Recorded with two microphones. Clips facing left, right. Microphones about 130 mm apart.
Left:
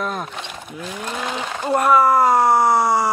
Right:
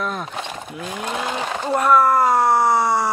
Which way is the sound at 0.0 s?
Centre (ahead or behind).